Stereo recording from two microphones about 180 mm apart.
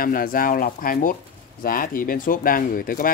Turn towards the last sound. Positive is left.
turn(degrees=50)  # may be behind; listen again after turning